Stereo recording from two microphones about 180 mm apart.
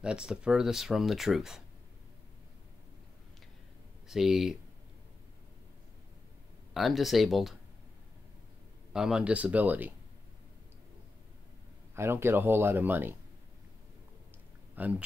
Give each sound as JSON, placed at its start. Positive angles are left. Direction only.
{"t": 0.0, "sound": "speech", "side_deg": -5}
{"t": 4.1, "sound": "speech", "side_deg": 0}
{"t": 6.7, "sound": "speech", "side_deg": 0}
{"t": 8.9, "sound": "speech", "side_deg": -5}
{"t": 11.9, "sound": "speech", "side_deg": -15}
{"t": 14.8, "sound": "speech", "side_deg": -10}